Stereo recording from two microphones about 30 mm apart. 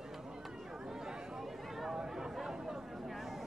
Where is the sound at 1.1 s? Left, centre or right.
Centre.